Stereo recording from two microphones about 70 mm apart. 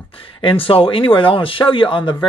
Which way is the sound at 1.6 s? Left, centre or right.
Left.